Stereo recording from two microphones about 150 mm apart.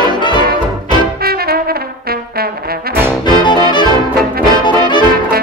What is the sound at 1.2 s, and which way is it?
Brass instrument, 90° right.